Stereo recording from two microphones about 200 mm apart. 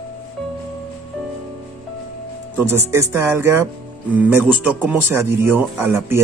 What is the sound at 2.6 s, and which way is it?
Speech, 10° right (ahead or behind).